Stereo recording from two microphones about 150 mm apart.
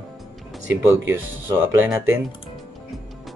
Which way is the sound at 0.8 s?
15° right (ahead or behind).